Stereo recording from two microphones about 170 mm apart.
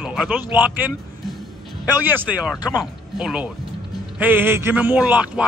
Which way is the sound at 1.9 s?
10° right (ahead or behind).